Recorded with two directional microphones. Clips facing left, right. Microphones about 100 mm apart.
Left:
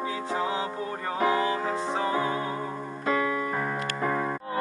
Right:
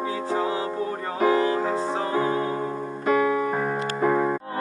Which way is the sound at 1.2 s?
30° right (ahead or behind).